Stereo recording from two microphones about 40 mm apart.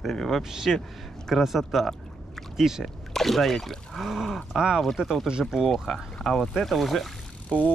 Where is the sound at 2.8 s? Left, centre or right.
Centre.